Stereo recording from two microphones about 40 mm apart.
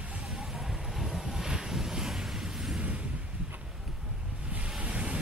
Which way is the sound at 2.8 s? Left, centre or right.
Right.